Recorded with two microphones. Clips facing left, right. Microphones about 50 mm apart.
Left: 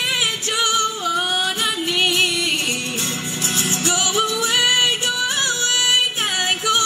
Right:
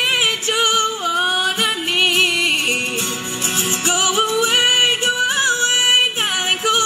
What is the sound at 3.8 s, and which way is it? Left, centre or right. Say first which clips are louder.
Music: right 3 dB; right.